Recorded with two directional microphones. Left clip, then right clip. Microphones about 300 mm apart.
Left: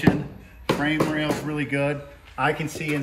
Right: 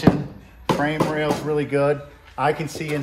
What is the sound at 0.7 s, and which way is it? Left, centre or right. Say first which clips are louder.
Speech: right 2 dB; centre.